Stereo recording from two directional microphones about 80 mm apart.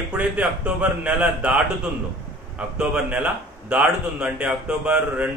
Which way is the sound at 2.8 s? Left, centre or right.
Centre.